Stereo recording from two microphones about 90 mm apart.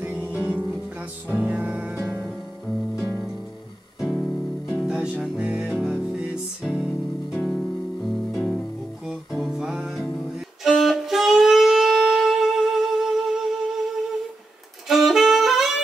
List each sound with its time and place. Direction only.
0.1 s music: 15° right (ahead or behind)
4.0 s music: centre (ahead or behind)
9.0 s guitar: 5° right (ahead or behind)
10.6 s wind instrument: centre (ahead or behind)
14.9 s saxophone: 5° right (ahead or behind)